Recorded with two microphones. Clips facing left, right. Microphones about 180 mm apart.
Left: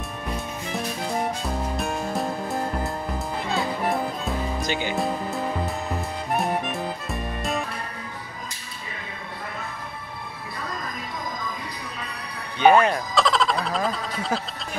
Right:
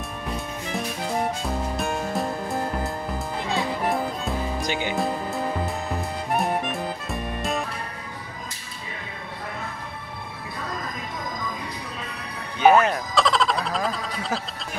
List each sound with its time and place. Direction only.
0.7 s music: centre (ahead or behind)
4.6 s speech: 15° right (ahead or behind)
4.9 s music: centre (ahead or behind)
12.5 s music: 5° right (ahead or behind)